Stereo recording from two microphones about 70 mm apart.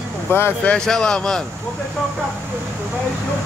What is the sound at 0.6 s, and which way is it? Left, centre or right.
Speech, centre.